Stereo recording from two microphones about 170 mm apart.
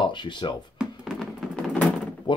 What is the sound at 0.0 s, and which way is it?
Speech, 25° left (ahead or behind).